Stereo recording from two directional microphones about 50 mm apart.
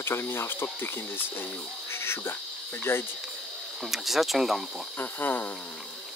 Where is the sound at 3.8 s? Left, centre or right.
Centre.